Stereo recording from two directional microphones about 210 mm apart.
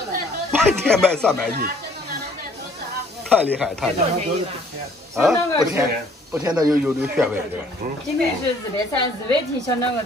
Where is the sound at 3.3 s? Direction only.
10° right (ahead or behind).